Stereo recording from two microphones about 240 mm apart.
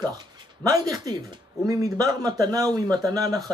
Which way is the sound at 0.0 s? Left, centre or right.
Centre.